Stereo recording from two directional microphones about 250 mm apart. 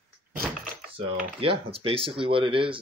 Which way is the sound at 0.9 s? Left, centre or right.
Right.